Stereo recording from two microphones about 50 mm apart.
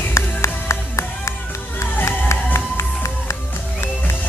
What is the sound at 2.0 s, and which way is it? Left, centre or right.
Music, left.